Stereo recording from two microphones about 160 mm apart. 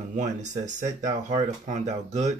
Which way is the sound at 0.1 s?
50° right (ahead or behind).